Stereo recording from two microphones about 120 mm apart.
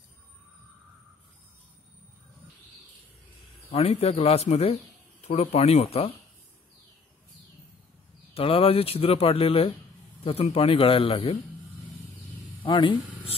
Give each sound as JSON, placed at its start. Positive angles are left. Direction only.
{"t": 3.7, "sound": "speech", "side_deg": 60}
{"t": 8.4, "sound": "speech", "side_deg": 50}
{"t": 12.6, "sound": "speech", "side_deg": 45}